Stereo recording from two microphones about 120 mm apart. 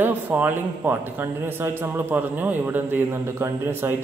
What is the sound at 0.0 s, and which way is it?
A woman's voice, 15° right (ahead or behind).